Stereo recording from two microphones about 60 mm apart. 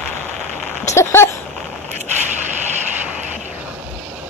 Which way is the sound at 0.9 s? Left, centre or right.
Left.